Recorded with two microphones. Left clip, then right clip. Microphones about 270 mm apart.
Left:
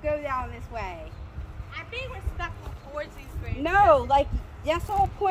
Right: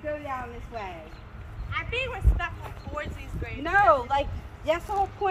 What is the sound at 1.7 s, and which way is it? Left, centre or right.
Speech, centre.